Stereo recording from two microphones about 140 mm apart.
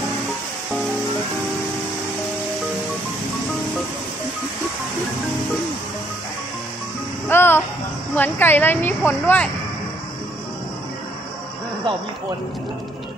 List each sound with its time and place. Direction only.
7.2 s music: 15° left (ahead or behind)
8.2 s a woman's voice: 15° left (ahead or behind)